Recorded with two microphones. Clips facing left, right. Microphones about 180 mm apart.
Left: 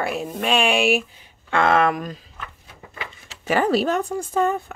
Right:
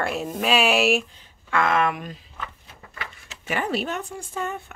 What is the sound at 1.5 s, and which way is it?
Speech, 30° left (ahead or behind).